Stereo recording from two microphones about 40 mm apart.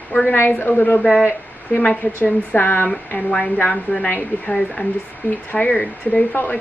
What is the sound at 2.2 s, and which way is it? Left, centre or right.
Speech, left.